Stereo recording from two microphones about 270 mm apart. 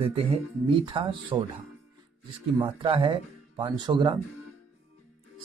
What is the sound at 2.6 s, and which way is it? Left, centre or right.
Speech, centre.